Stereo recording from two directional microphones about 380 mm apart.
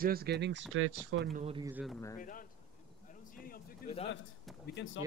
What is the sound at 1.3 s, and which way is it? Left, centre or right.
Speech, centre.